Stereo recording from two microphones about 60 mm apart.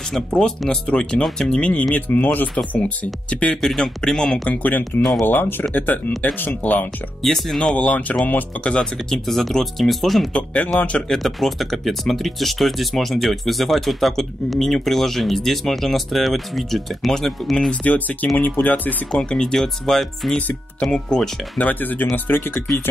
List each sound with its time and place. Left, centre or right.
0.7 s speech: centre
1.6 s speech: left
3.6 s speech: centre
4.6 s speech: left
7.2 s speech: centre
8.1 s speech: centre
8.6 s speech: centre
10.3 s speech: centre
11.1 s speech: centre
17.8 s speech: left
19.1 s speech: centre
21.5 s speech: left